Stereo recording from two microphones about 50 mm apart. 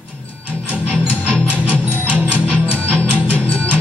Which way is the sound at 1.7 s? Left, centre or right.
Right.